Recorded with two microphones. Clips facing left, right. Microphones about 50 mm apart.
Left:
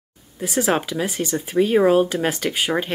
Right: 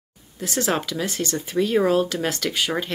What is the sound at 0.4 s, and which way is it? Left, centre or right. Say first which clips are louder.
Speech: left 3 dB; centre.